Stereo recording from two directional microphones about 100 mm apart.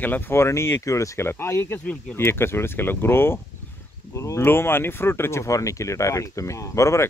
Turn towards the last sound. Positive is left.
turn(degrees=30)  # may be behind; listen again after turning